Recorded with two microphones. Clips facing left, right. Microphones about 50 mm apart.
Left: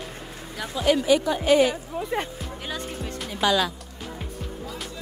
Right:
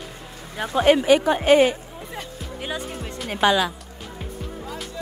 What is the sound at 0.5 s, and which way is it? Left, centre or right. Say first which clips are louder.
Speech: right 5 dB; right.